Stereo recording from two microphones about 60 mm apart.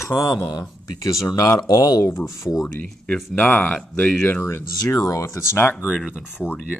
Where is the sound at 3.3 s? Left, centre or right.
Left.